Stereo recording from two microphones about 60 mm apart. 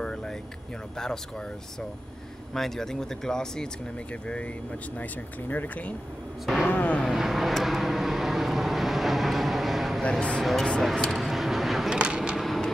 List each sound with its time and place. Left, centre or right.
0.0 s vehicle: centre
0.9 s speech: centre
2.5 s speech: centre; by 5.9 s left
6.4 s speech: centre
6.7 s speech: left
7.2 s vehicle: centre
10.4 s speech: centre
11.0 s vehicle: centre
11.9 s a sound: centre
12.4 s a sound: centre